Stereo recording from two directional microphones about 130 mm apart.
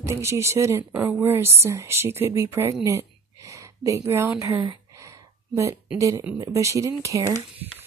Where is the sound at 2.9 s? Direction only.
25° right (ahead or behind).